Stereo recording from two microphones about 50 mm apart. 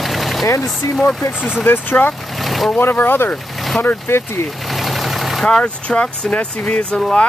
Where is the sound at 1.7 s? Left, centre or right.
Left.